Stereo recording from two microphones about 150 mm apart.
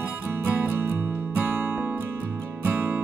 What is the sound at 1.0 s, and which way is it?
Music, 15° right (ahead or behind).